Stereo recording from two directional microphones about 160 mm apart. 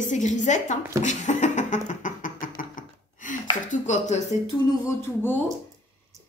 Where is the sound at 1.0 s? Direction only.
50° left (ahead or behind).